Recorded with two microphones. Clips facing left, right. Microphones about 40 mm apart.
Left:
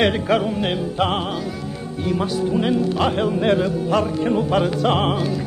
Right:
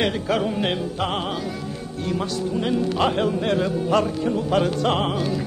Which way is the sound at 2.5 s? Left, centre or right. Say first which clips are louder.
Left 2 dB; centre.